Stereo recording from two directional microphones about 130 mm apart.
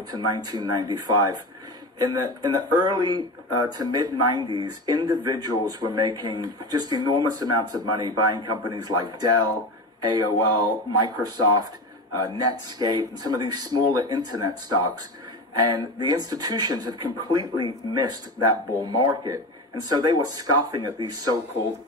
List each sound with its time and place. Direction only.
0.1 s speech: 30° right (ahead or behind)